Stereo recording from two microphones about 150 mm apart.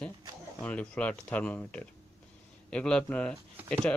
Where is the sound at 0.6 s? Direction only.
10° left (ahead or behind).